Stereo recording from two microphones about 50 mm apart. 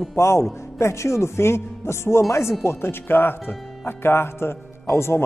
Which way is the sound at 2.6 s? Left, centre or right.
Left.